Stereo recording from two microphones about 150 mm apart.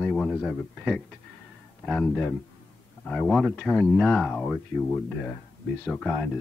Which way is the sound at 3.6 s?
10° left (ahead or behind).